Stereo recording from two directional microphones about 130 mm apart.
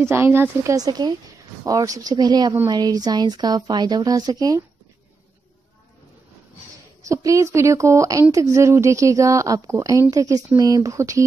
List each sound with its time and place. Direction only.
0.0 s speech: 20° right (ahead or behind)
7.0 s speech: 25° right (ahead or behind)